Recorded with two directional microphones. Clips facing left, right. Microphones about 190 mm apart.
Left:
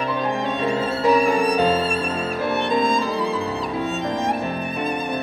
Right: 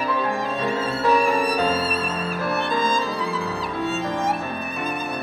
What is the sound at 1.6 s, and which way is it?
Violin, 30° left (ahead or behind).